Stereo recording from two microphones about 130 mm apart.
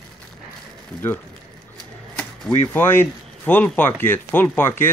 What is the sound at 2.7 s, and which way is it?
Speech, 15° left (ahead or behind).